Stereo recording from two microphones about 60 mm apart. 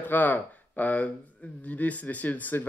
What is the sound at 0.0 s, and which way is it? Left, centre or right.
Speech, left.